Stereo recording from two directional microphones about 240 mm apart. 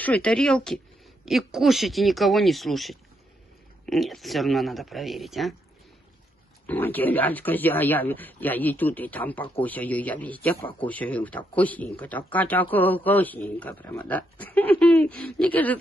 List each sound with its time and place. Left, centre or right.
0.0 s speech: centre
6.6 s speech: centre